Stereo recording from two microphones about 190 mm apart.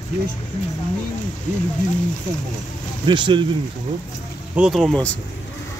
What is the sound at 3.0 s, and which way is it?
Speech, 25° right (ahead or behind).